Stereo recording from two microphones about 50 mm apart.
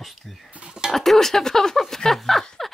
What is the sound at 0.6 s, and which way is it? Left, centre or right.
Dishes, centre.